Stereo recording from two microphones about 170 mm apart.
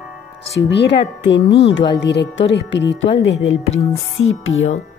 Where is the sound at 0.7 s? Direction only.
85° left.